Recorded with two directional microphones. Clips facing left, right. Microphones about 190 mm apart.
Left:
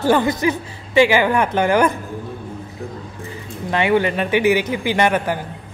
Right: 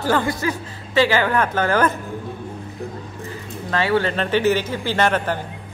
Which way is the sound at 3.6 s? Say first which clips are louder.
Left 3 dB; 15° left (ahead or behind).